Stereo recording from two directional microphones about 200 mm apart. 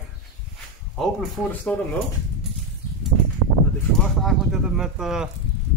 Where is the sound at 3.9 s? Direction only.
Centre (ahead or behind).